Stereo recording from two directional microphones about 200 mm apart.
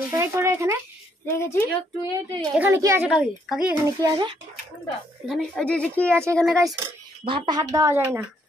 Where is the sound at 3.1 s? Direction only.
Centre (ahead or behind).